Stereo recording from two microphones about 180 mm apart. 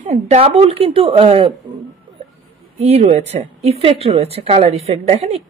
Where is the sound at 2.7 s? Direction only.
35° right (ahead or behind).